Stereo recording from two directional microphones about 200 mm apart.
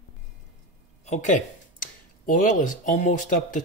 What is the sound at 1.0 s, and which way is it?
Speech, 35° left (ahead or behind).